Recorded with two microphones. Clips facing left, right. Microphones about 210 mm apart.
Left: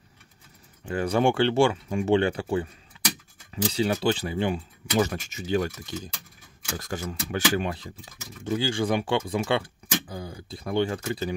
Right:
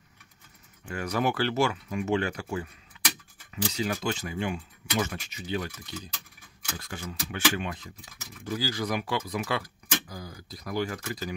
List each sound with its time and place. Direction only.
0.8 s speech: 30° left (ahead or behind)
2.9 s a sound: 35° left (ahead or behind)
3.7 s speech: 30° left (ahead or behind)